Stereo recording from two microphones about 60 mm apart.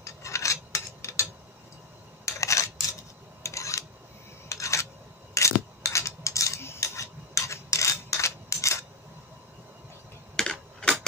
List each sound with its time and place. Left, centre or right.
0.0 s filing: left
2.2 s coin: left
3.4 s a sound: left
5.3 s cutlery: left
6.8 s a sound: left
10.3 s typing: centre